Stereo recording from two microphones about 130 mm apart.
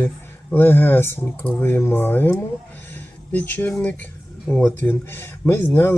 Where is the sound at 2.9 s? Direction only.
15° left (ahead or behind).